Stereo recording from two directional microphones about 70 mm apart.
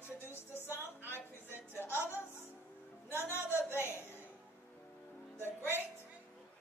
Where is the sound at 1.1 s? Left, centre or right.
Left.